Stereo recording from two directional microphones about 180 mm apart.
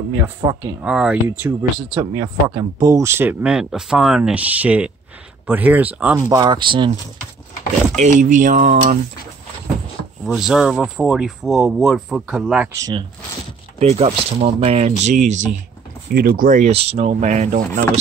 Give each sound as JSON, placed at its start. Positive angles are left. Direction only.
{"t": 0.5, "sound": "speech", "side_deg": -15}
{"t": 0.8, "sound": "speech", "side_deg": -5}
{"t": 6.1, "sound": "speech", "side_deg": -20}
{"t": 7.9, "sound": "speech", "side_deg": -40}
{"t": 10.2, "sound": "speech", "side_deg": -5}
{"t": 12.7, "sound": "speech", "side_deg": -20}
{"t": 13.7, "sound": "speech", "side_deg": -35}
{"t": 16.1, "sound": "speech", "side_deg": -55}